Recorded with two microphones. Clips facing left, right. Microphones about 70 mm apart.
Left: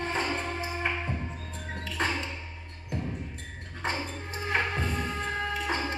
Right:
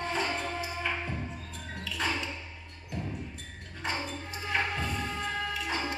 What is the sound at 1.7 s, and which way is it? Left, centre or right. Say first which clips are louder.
Music: left 2 dB; left.